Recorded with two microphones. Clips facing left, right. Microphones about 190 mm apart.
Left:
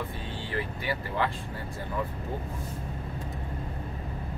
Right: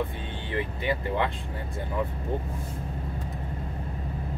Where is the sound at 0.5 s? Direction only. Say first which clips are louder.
Right 4 dB; 20° right (ahead or behind).